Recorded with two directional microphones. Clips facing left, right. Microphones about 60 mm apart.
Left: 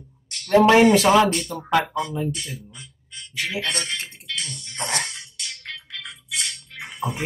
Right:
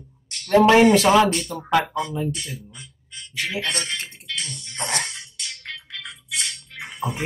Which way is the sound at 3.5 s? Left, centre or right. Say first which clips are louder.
Even; right.